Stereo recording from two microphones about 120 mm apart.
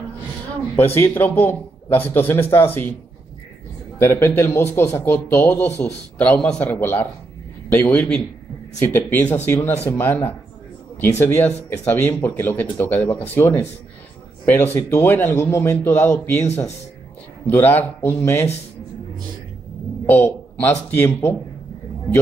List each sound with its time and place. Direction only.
0.9 s speech: 20° left (ahead or behind)
4.0 s a man's voice: 20° left (ahead or behind)
17.5 s speech: 15° left (ahead or behind)
20.1 s a man's voice: 15° left (ahead or behind)